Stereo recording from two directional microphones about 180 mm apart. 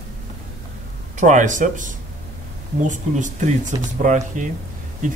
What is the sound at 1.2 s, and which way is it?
Speech, 45° right (ahead or behind).